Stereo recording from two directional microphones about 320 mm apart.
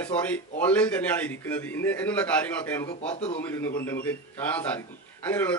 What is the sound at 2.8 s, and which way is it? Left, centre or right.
Speech, centre.